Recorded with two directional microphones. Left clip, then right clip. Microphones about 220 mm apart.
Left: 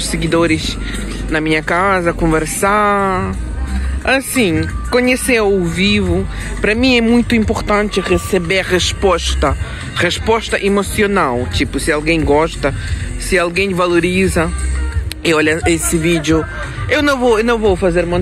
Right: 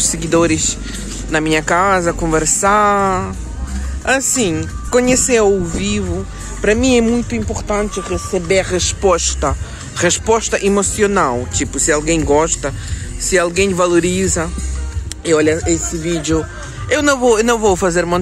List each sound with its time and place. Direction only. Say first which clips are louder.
0.0 s speech: even; 10° right (ahead or behind)
4.4 s speech: left 3 dB; 5° right (ahead or behind); by 8.5 s 20° left (ahead or behind)
8.5 s speech: left 1 dB; 5° left (ahead or behind)
15.2 s speech: left 1 dB; 10° left (ahead or behind); by 17.6 s 10° right (ahead or behind)
17.6 s speech: left 1 dB; 30° right (ahead or behind)